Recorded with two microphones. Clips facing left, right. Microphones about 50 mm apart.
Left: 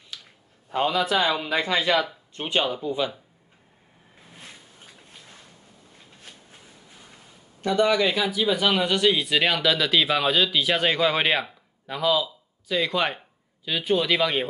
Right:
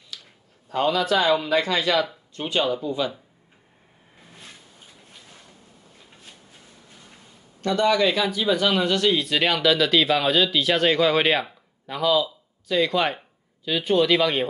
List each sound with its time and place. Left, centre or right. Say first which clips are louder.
0.7 s a man's voice: right 2 dB; centre
7.6 s speech: right 1 dB; centre